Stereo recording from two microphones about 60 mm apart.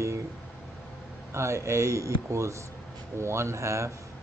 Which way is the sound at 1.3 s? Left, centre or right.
Right.